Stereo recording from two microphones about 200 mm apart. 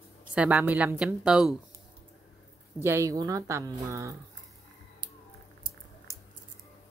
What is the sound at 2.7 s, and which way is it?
Speech, 15° right (ahead or behind).